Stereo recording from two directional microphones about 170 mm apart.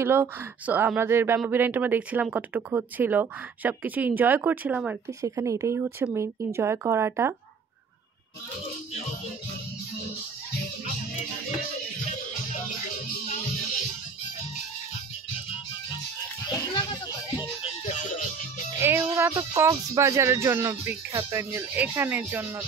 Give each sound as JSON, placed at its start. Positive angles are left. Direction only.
{"t": 0.0, "sound": "speech", "side_deg": -10}
{"t": 5.2, "sound": "speech", "side_deg": -20}
{"t": 17.4, "sound": "music", "side_deg": 35}
{"t": 18.8, "sound": "music", "side_deg": -15}
{"t": 19.1, "sound": "speech", "side_deg": -15}